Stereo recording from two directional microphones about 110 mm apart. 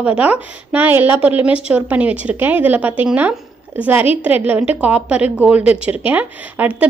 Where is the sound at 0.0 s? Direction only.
10° right (ahead or behind).